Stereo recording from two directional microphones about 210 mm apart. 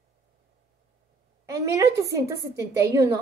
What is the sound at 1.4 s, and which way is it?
A woman's voice, 15° right (ahead or behind).